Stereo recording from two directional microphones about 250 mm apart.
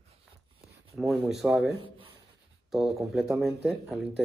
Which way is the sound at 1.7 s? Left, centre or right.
Right.